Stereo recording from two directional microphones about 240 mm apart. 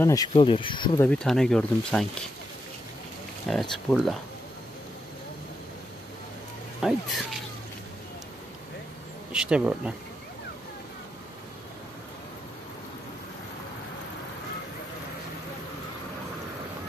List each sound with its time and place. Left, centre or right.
0.0 s speech: centre
1.0 s speech: centre
3.4 s speech: centre
6.8 s speech: centre
9.3 s speech: centre